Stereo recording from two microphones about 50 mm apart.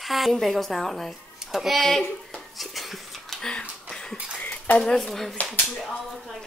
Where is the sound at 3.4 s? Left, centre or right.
Centre.